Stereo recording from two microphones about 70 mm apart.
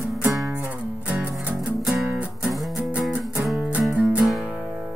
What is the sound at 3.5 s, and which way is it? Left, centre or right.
Music, centre.